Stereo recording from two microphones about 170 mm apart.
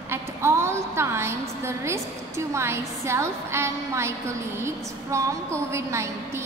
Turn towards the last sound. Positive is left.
turn(degrees=-15)  # may be behind; listen again after turning